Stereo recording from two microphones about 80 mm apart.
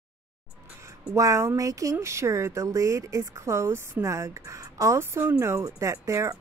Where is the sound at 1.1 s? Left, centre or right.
Right.